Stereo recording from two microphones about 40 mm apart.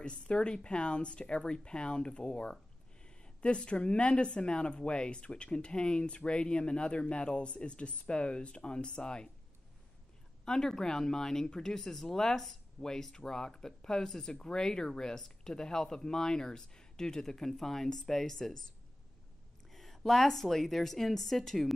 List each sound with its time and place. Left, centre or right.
0.0 s speech: left
10.4 s speech: centre
19.7 s a sound: centre
20.1 s a woman's voice: centre